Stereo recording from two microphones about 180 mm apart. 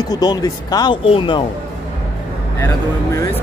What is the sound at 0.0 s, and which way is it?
Speech, 20° left (ahead or behind).